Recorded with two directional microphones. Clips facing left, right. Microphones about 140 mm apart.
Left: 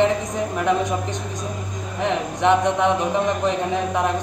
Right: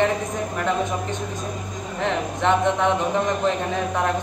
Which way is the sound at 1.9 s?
15° left (ahead or behind).